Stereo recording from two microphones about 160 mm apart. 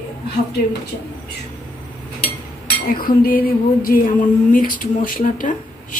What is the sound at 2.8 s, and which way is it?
A woman's voice, 65° left (ahead or behind).